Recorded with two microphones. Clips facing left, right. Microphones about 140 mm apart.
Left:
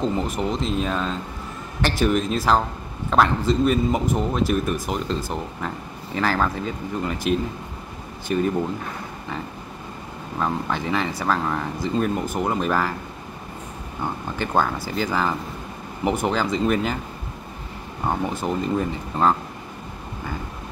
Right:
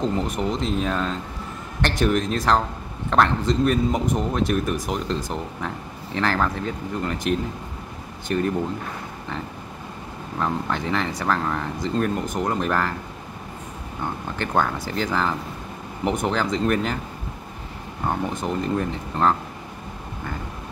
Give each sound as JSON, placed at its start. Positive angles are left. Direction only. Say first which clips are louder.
{"t": 0.0, "sound": "speech", "louder": "even", "side_deg": 0}
{"t": 10.4, "sound": "speech", "louder": "even", "side_deg": 5}
{"t": 14.4, "sound": "speech", "louder": "left 1 dB", "side_deg": 5}
{"t": 18.0, "sound": "speech", "louder": "left 1 dB", "side_deg": 5}